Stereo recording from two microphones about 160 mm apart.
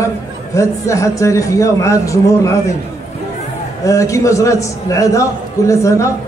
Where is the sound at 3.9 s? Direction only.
20° left (ahead or behind).